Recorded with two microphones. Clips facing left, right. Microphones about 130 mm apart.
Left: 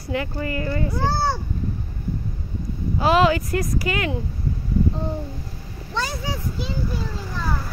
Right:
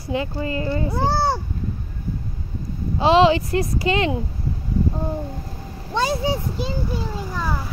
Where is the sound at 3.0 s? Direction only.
25° right (ahead or behind).